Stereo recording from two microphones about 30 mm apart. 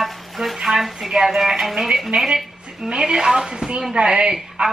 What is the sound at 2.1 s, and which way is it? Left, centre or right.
A woman's voice, right.